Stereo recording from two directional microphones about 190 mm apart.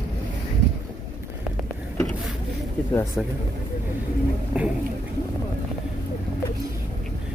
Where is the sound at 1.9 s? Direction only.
5° left (ahead or behind).